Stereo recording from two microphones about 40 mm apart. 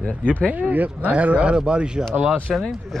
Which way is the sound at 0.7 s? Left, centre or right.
Right.